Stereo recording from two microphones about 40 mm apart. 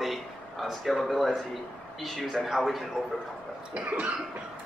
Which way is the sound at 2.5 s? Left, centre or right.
Centre.